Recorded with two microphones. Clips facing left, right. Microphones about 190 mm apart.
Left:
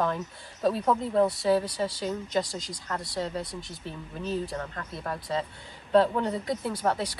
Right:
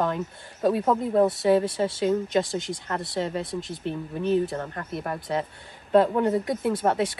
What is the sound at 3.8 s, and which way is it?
Speech, 65° right (ahead or behind).